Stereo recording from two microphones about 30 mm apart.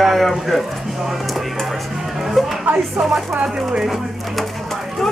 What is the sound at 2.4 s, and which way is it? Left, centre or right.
Music, centre.